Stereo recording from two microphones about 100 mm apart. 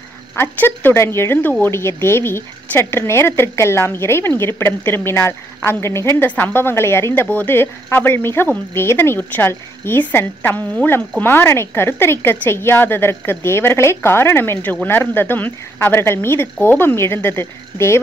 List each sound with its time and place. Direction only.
0.4 s speech: 20° left (ahead or behind)